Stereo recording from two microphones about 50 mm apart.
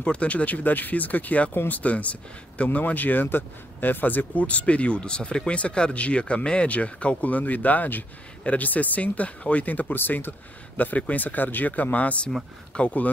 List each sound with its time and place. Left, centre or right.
0.0 s speech: left
10.8 s speech: left